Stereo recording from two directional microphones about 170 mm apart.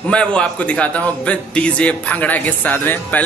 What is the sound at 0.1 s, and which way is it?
A man's voice, 5° left (ahead or behind).